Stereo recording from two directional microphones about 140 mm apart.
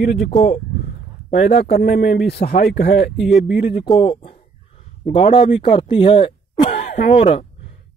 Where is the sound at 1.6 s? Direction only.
90° left.